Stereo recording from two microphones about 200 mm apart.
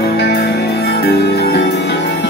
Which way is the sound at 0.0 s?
55° left (ahead or behind).